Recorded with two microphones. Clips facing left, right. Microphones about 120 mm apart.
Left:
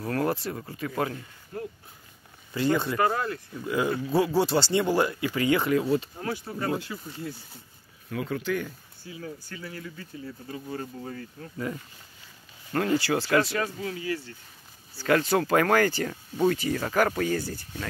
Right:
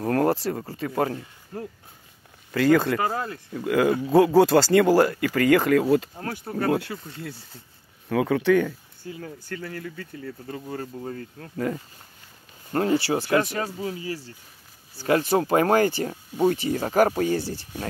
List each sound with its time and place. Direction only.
0.0 s speech: 40° right (ahead or behind)
2.5 s speech: 90° right
3.1 s speech: 30° right (ahead or behind)
3.6 s speech: 65° right (ahead or behind)
4.1 s speech: 50° right (ahead or behind)
5.2 s speech: 55° right (ahead or behind)
5.7 s speech: 60° right (ahead or behind)
8.2 s speech: 80° right
9.0 s speech: 50° right (ahead or behind)
12.7 s speech: 30° right (ahead or behind)